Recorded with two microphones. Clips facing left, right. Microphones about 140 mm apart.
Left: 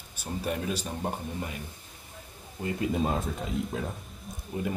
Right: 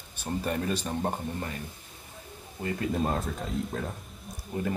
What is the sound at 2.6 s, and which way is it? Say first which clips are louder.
Speech: left 1 dB; 20° left (ahead or behind).